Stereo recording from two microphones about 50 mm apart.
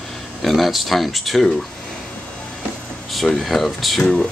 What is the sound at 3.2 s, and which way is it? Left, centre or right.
Speech, centre.